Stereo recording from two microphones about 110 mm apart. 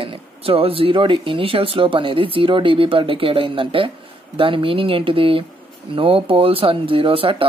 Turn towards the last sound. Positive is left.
turn(degrees=-55)  # may be behind; listen again after turning